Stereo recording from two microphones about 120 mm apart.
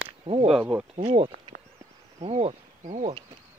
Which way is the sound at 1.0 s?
50° right (ahead or behind).